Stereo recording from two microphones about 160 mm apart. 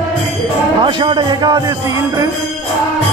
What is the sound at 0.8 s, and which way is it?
Speech, 30° right (ahead or behind).